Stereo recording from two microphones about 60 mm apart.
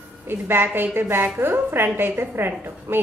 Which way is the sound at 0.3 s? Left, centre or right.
Right.